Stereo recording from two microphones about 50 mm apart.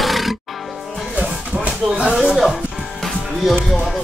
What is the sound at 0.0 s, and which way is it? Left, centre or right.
Music, centre.